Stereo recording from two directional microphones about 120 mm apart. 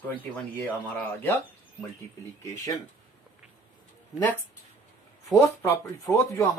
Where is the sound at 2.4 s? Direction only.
30° left (ahead or behind).